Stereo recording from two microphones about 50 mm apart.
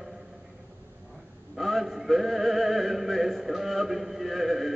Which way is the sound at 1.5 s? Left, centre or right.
Centre.